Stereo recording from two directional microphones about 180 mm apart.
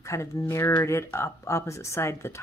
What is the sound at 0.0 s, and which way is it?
Speech, 15° left (ahead or behind).